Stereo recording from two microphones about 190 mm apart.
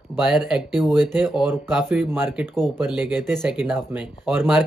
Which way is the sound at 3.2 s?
10° right (ahead or behind).